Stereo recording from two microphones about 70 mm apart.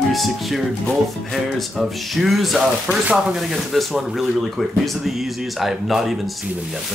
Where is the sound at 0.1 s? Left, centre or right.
Centre.